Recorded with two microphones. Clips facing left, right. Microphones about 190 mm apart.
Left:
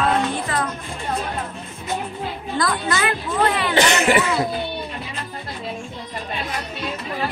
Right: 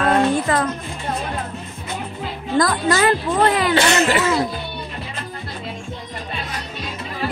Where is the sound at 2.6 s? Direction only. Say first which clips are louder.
Right 5 dB; 40° right (ahead or behind).